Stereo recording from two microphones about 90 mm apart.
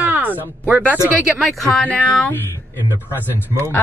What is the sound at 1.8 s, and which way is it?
Speech, 15° left (ahead or behind).